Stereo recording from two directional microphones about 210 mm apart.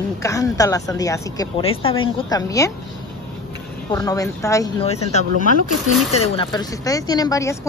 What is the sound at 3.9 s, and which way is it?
Speech, 15° left (ahead or behind).